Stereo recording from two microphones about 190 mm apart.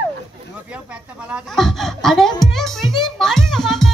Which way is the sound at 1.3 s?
Centre (ahead or behind).